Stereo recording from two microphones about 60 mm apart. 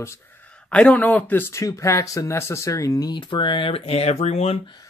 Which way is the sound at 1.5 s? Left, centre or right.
Left.